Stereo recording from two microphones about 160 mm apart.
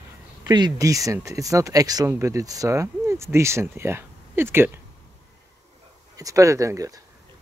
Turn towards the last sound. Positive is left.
turn(degrees=-20)  # may be behind; listen again after turning